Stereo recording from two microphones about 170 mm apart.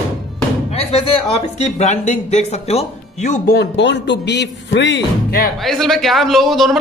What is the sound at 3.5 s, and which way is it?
Speech, 90° left.